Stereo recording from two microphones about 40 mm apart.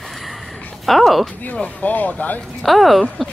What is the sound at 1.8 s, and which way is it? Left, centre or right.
Speech, left.